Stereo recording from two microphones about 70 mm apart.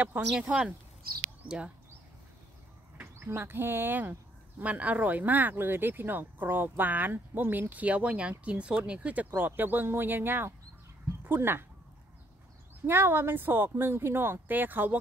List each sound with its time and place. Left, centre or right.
0.4 s speech: centre
3.0 s speech: right
12.8 s speech: right